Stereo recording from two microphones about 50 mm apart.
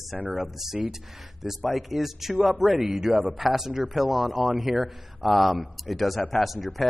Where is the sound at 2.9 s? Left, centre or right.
Centre.